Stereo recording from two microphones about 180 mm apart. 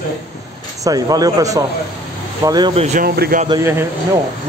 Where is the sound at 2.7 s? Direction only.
35° right (ahead or behind).